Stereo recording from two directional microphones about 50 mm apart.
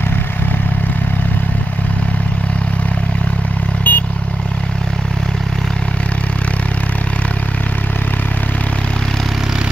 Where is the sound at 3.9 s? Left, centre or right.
Left.